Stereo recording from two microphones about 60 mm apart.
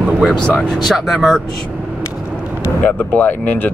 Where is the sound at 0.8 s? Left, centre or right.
Centre.